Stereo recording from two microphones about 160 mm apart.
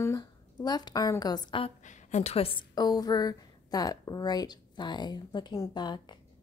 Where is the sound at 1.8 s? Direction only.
50° left (ahead or behind); by 6.1 s 30° left (ahead or behind).